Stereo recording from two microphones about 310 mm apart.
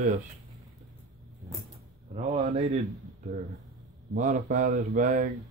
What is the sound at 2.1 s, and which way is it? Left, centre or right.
Speech, right.